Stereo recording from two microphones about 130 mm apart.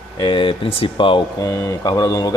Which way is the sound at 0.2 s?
40° left (ahead or behind).